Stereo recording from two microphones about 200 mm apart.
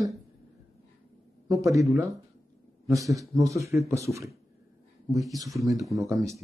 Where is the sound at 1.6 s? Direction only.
15° right (ahead or behind).